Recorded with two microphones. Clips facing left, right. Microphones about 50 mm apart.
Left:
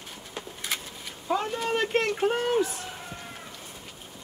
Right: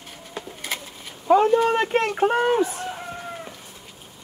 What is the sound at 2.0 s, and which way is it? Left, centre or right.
Speech, right.